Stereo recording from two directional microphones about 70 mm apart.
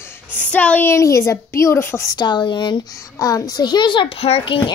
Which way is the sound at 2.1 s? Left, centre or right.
Left.